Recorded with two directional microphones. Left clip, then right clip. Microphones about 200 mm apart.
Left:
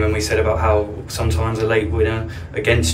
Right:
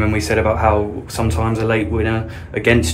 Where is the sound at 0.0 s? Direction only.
40° right (ahead or behind).